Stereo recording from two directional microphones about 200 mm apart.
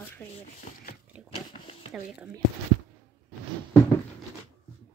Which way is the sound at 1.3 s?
30° left (ahead or behind).